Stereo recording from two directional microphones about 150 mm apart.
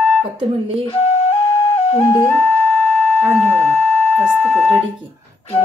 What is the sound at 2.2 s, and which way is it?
Music, 15° left (ahead or behind).